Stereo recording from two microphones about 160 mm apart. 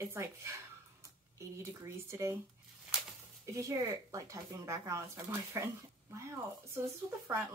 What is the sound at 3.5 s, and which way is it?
Speech, 20° right (ahead or behind).